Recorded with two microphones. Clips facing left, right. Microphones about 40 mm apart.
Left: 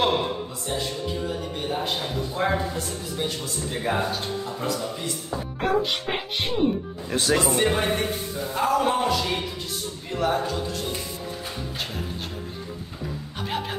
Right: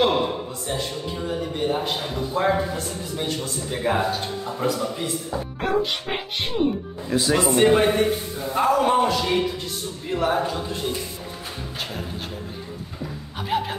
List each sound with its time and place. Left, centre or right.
0.0 s a sound: centre
1.6 s a man's voice: centre
7.1 s speech: left
7.5 s a man's voice: centre
13.5 s speech: centre